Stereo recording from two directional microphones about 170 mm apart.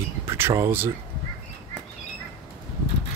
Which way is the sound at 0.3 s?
15° right (ahead or behind).